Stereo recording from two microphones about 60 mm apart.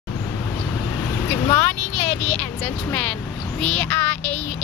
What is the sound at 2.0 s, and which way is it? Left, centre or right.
Speech, left.